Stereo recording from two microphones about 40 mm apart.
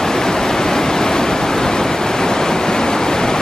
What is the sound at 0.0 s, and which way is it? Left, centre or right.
Waves, centre.